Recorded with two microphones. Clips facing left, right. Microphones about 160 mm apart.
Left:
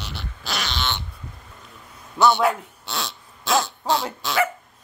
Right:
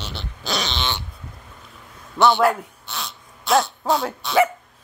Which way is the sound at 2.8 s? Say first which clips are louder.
Left 3 dB; 85° left.